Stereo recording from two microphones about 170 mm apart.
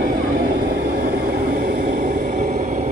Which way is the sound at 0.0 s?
55° right (ahead or behind).